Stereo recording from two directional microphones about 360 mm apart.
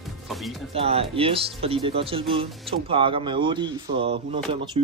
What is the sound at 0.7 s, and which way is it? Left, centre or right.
Speech, centre.